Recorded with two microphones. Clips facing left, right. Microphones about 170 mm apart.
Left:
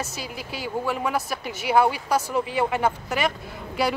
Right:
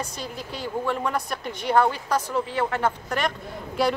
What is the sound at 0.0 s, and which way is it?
Speech, 5° left (ahead or behind).